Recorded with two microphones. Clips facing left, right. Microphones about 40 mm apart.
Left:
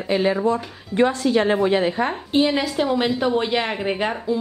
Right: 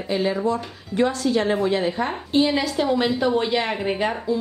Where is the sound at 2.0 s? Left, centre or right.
Centre.